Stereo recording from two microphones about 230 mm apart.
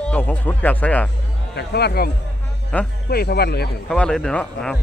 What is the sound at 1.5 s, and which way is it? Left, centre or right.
Speech, left.